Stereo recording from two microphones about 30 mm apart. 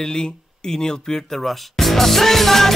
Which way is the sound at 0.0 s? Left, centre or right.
Left.